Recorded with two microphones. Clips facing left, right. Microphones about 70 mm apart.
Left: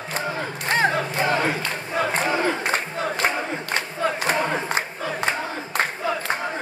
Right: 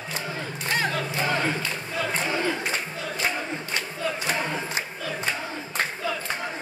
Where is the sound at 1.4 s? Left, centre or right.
Left.